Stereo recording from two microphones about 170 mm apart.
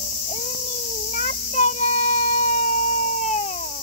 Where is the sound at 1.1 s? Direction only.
45° left (ahead or behind).